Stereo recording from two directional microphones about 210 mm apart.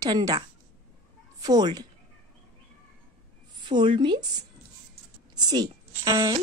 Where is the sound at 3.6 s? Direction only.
20° right (ahead or behind).